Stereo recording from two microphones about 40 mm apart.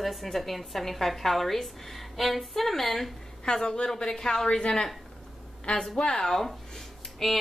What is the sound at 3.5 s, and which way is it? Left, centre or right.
A woman's voice, centre.